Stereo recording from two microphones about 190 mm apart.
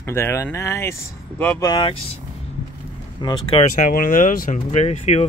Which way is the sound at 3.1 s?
25° left (ahead or behind).